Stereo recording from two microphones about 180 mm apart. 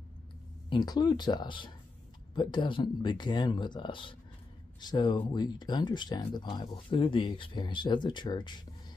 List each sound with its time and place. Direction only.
0.7 s speech: 25° left (ahead or behind)